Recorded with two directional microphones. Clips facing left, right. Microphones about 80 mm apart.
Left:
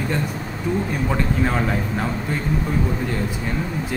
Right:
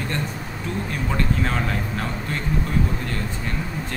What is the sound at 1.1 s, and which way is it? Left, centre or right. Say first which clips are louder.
Speech: left 1 dB; centre.